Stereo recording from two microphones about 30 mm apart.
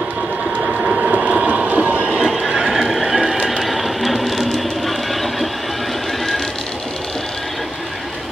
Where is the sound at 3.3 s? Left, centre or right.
Right.